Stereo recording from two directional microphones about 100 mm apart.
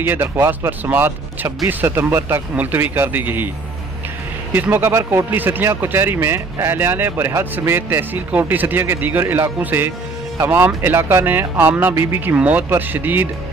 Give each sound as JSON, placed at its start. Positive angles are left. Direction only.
{"t": 0.0, "sound": "speech", "side_deg": -25}
{"t": 4.5, "sound": "speech", "side_deg": -20}
{"t": 12.4, "sound": "speech", "side_deg": -15}